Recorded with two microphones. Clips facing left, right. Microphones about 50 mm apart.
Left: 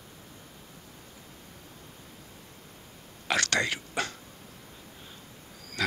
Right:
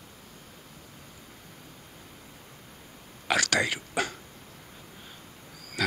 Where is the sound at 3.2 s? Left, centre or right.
Centre.